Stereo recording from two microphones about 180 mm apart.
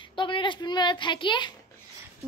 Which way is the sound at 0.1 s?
25° left (ahead or behind).